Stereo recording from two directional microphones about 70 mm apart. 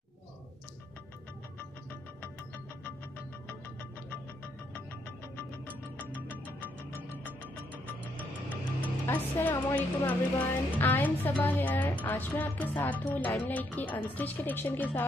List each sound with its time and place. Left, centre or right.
5.9 s music: left
9.0 s speech: left